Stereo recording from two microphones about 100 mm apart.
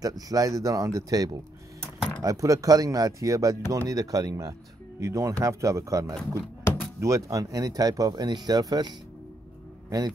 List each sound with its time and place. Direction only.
0.0 s a man's voice: 40° right (ahead or behind)